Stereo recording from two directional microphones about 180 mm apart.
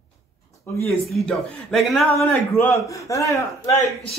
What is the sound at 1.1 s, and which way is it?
A man's voice, centre (ahead or behind).